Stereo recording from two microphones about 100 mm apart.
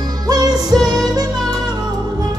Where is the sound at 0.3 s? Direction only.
40° right (ahead or behind).